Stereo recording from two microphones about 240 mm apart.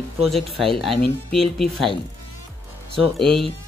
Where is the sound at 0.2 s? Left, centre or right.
Centre.